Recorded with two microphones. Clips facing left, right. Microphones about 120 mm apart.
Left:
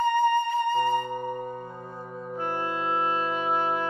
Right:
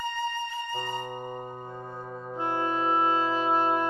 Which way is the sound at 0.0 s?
55° left (ahead or behind).